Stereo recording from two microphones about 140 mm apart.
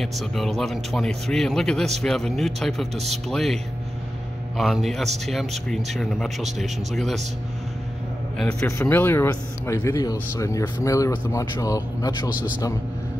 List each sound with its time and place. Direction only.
0.0 s speech: centre (ahead or behind)
4.6 s speech: centre (ahead or behind)
8.4 s speech: 5° left (ahead or behind)
8.6 s speech: 20° left (ahead or behind)